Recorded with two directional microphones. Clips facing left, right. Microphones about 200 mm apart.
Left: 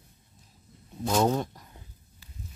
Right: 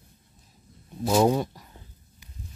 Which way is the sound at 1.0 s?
10° right (ahead or behind).